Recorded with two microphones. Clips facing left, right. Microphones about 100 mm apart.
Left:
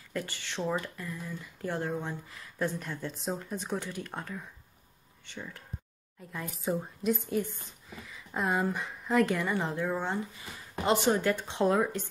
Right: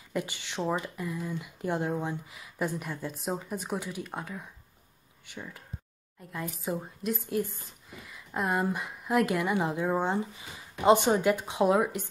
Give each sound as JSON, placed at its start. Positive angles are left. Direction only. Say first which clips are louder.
{"t": 0.1, "sound": "a woman's voice", "louder": "right 3 dB", "side_deg": -15}
{"t": 8.0, "sound": "a sound", "louder": "right 1 dB", "side_deg": 0}
{"t": 8.7, "sound": "speech", "louder": "even", "side_deg": -5}